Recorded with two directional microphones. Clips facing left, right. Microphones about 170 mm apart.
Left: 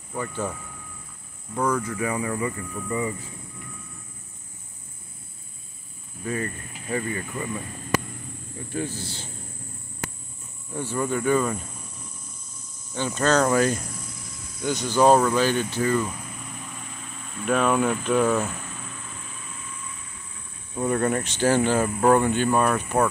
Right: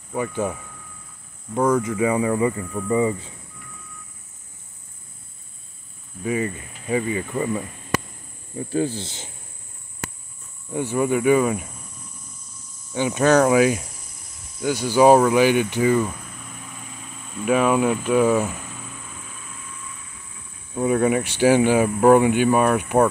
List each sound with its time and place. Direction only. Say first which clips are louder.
0.1 s speech: right 5 dB; 15° right (ahead or behind)
6.2 s speech: right 5 dB; 15° right (ahead or behind)
8.7 s speech: right 7 dB; 30° right (ahead or behind)
10.7 s speech: right 5 dB; 15° right (ahead or behind)
12.9 s speech: right 5 dB; 15° right (ahead or behind)
17.3 s a sound: right 3 dB; 5° right (ahead or behind)
20.7 s speech: right 4 dB; 5° right (ahead or behind)